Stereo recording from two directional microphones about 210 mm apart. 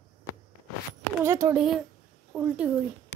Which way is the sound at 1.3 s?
15° right (ahead or behind).